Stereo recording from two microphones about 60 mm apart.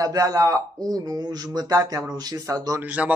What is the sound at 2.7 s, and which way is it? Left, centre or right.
Speech, right.